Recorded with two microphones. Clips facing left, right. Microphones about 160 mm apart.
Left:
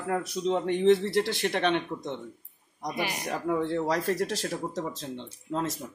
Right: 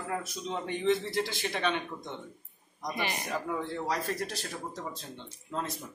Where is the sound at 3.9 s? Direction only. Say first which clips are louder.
Left 6 dB; 75° left (ahead or behind).